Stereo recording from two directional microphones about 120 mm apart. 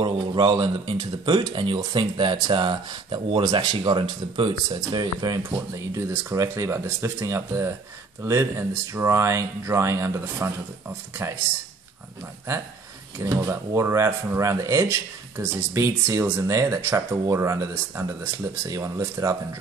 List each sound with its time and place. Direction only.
0.0 s speech: 40° right (ahead or behind); by 11.4 s 20° right (ahead or behind)
12.5 s speech: 20° right (ahead or behind)